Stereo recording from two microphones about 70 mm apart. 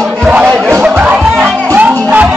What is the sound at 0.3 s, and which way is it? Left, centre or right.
Music, centre.